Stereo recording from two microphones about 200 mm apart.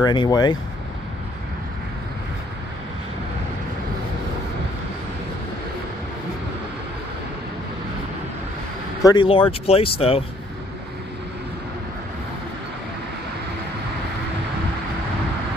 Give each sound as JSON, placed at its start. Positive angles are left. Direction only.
{"t": 0.0, "sound": "speech", "side_deg": 20}
{"t": 9.0, "sound": "speech", "side_deg": 25}